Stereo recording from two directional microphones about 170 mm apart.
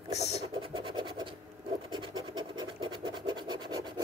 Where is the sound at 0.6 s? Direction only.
30° right (ahead or behind).